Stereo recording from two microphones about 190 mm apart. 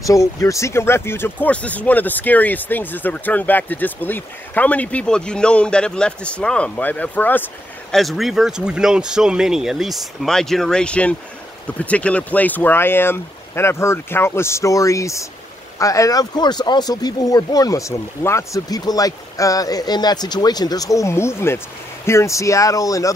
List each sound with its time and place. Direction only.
0.0 s speech: 15° left (ahead or behind)